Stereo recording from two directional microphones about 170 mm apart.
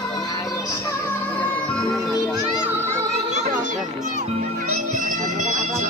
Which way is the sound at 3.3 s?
40° right (ahead or behind).